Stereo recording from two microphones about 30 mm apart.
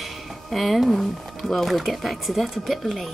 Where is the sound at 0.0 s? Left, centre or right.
Centre.